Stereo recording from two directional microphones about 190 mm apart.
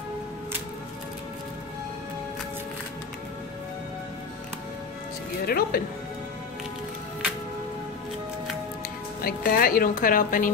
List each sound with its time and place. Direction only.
5.5 s a woman's voice: 55° left (ahead or behind)
9.2 s a woman's voice: 50° left (ahead or behind)